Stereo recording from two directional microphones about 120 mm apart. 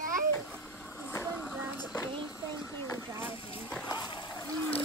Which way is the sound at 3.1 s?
20° right (ahead or behind).